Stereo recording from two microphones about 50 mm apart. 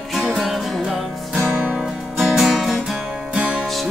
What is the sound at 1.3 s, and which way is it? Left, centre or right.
Music, right.